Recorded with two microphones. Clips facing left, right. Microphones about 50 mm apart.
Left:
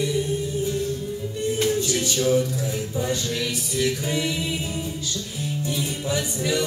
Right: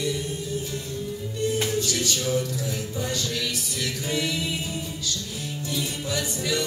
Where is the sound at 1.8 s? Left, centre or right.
Left.